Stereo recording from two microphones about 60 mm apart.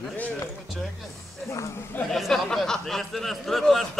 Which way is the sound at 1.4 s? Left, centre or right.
Left.